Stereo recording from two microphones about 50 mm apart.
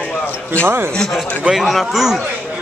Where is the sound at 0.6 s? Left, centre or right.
Right.